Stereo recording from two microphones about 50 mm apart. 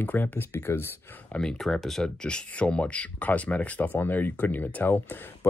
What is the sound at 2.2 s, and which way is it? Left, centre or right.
Speech, centre.